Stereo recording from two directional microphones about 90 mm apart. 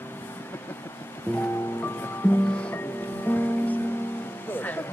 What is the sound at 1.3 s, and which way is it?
Music, 25° left (ahead or behind).